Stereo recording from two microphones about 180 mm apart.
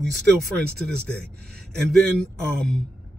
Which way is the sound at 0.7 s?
Centre (ahead or behind).